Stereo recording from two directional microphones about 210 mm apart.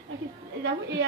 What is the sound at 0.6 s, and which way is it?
Speech, 55° right (ahead or behind).